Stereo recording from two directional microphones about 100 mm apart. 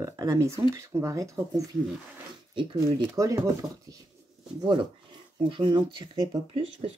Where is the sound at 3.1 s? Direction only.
35° right (ahead or behind).